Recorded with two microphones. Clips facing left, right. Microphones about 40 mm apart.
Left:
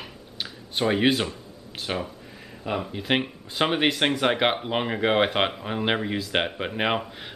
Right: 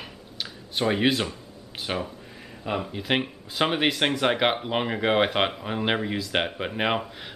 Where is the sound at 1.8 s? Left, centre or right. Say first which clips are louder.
Even; centre.